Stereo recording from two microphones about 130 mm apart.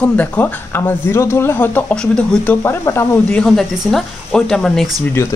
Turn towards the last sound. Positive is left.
turn(degrees=20)  # may be behind; listen again after turning